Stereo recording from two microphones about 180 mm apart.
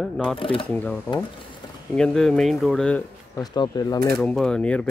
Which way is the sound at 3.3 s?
20° left (ahead or behind).